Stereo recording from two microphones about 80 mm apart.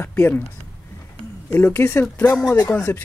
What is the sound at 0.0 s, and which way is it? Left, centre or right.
Speech, left.